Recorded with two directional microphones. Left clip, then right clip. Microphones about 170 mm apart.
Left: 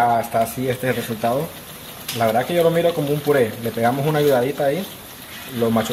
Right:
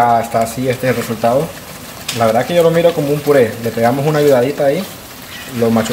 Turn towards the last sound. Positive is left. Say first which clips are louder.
# right 5 dB
turn(degrees=5)  # may be behind; listen again after turning